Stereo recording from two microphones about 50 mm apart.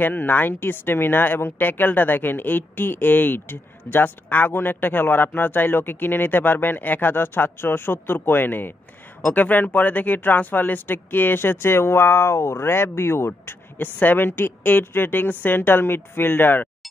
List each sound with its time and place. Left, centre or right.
0.0 s a woman's voice: left
13.3 s a woman's voice: left